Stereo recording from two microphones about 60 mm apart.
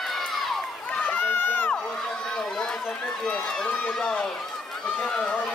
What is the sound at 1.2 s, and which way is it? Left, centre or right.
Crowd, left.